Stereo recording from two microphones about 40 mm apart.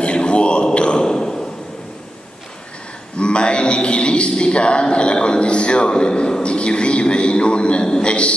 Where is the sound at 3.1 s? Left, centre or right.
Left.